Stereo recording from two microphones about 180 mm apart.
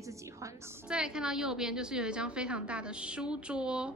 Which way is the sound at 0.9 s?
5° right (ahead or behind).